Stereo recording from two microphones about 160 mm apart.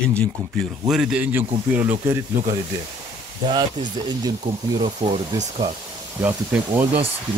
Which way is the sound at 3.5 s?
25° right (ahead or behind).